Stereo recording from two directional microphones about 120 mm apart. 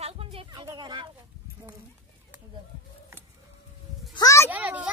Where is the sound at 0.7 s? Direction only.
40° right (ahead or behind).